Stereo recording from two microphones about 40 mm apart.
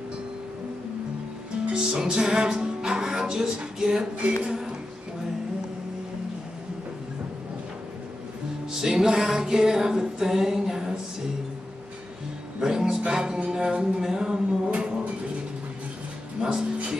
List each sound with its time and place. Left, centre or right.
1.7 s music: centre
4.4 s speech: centre
8.7 s music: centre
12.5 s speech: centre
14.0 s music: centre
16.3 s speech: centre